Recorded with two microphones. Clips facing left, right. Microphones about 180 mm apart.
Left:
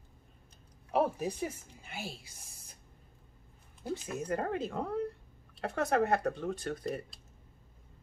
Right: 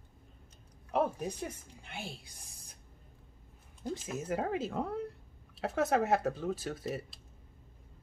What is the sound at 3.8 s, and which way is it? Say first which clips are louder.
Speech: left 1 dB; centre (ahead or behind).